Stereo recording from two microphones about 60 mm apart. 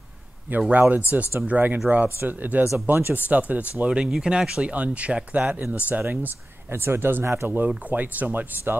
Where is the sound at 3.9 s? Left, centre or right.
Centre.